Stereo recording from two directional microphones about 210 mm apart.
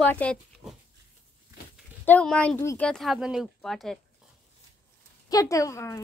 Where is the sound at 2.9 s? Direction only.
Centre (ahead or behind).